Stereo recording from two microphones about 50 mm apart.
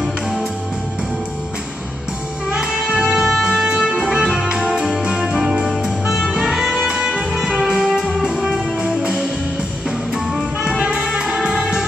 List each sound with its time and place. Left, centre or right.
0.0 s music: centre
2.5 s music: centre
10.8 s music: centre